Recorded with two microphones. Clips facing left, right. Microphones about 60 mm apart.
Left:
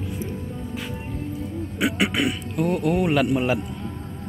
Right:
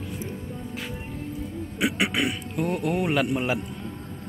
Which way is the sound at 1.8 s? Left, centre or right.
Centre.